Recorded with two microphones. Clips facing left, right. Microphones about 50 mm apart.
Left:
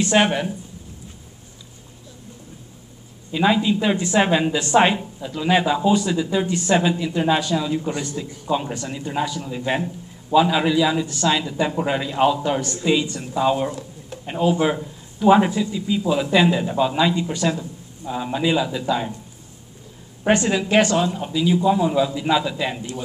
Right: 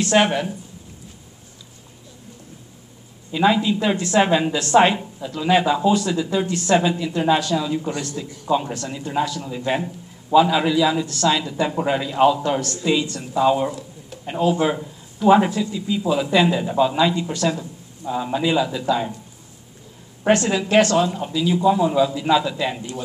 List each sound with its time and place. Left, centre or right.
0.0 s speech: centre
3.3 s speech: centre
3.9 s a woman's voice: centre
4.2 s speech: centre
13.2 s speech: centre
17.6 s speech: centre
20.2 s speech: centre